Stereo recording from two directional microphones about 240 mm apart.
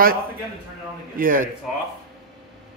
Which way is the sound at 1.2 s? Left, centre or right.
Right.